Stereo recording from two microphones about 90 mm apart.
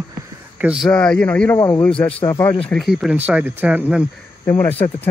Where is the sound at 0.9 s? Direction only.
10° left (ahead or behind).